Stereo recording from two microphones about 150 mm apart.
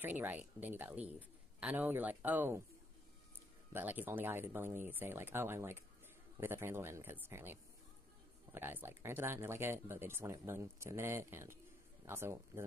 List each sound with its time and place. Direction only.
0.0 s speech: 15° right (ahead or behind)
3.7 s speech: 15° right (ahead or behind)
8.5 s speech: 15° right (ahead or behind)